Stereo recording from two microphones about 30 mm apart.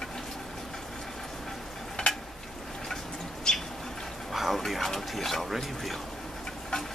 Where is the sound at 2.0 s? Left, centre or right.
Left.